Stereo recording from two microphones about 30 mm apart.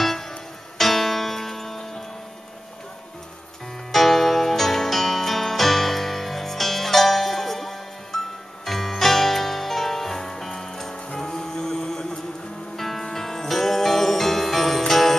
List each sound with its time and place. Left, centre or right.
0.0 s music: centre
3.9 s music: centre